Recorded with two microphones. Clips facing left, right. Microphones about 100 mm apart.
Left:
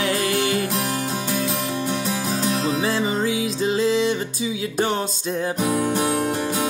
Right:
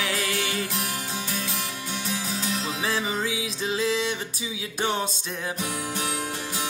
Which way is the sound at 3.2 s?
40° left (ahead or behind).